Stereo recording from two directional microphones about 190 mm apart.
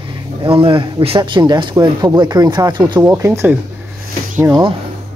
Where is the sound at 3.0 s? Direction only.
15° right (ahead or behind).